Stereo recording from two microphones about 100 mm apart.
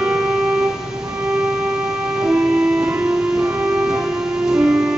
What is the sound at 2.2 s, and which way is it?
Music, 10° right (ahead or behind).